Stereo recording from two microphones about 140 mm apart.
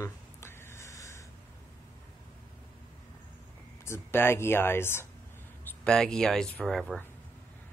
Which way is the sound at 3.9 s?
15° left (ahead or behind).